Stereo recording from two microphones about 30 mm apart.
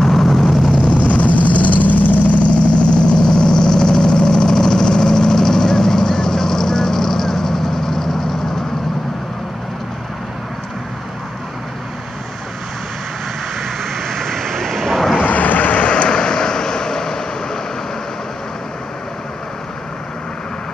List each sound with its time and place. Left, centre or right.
0.0 s vehicle: centre
0.9 s vehicle: left; by 8.6 s centre
13.6 s vehicle: centre
14.8 s vehicle: centre
15.2 s vehicle: left
15.8 s vehicle: left